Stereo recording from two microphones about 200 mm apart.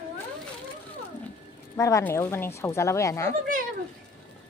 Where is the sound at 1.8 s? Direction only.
15° left (ahead or behind).